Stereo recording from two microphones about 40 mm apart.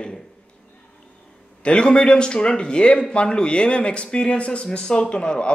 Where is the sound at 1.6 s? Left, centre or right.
Left.